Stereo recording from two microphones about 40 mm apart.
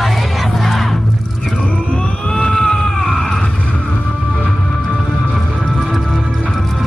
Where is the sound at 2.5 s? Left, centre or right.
Centre.